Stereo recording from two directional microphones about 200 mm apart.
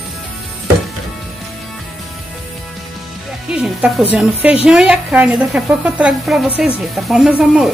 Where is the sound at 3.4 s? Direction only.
5° right (ahead or behind).